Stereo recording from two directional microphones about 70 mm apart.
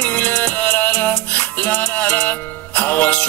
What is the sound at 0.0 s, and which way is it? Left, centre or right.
Music, left.